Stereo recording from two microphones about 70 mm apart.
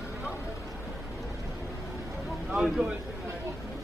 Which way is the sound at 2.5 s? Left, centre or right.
Centre.